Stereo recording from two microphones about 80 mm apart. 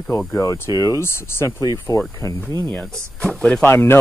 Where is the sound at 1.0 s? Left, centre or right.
Left.